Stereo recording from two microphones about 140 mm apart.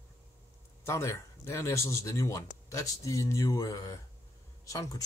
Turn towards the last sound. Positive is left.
turn(degrees=25)  # may be behind; listen again after turning